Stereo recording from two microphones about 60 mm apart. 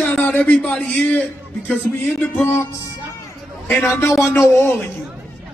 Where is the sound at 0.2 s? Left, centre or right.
Left.